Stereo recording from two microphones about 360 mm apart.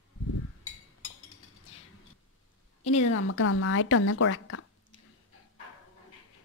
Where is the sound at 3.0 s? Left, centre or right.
Left.